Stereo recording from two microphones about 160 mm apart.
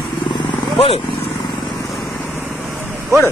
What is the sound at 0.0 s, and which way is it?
Vehicle, 30° left (ahead or behind).